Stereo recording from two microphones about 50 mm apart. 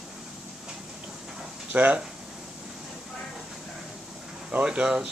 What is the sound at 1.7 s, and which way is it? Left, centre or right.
Speech, right.